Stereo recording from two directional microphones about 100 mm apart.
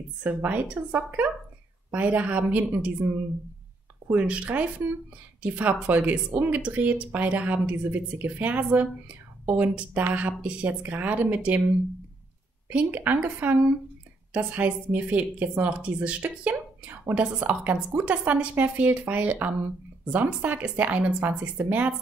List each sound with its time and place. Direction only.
0.2 s speech: 15° right (ahead or behind)
4.1 s speech: 15° right (ahead or behind)
12.6 s speech: 15° right (ahead or behind)